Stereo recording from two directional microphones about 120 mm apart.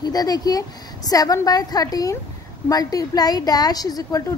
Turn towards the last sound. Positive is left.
turn(degrees=30)  # may be behind; listen again after turning